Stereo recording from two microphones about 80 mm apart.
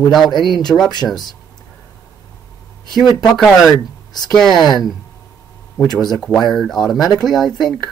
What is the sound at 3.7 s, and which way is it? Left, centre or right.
Speech, left.